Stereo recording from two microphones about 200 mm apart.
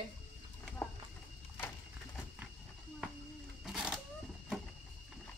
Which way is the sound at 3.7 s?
5° right (ahead or behind).